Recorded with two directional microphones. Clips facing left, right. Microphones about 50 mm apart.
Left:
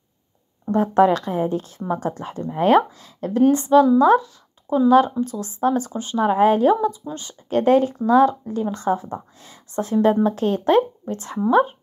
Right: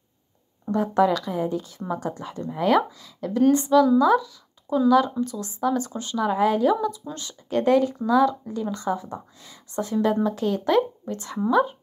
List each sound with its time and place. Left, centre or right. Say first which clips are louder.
0.7 s a woman's voice: left 4 dB; left